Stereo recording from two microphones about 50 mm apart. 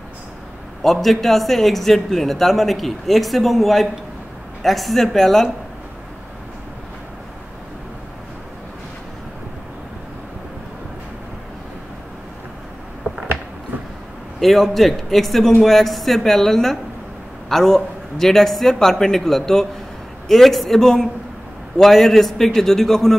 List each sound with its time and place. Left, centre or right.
1.0 s speech: centre
13.0 s a sound: right
14.4 s a man's voice: centre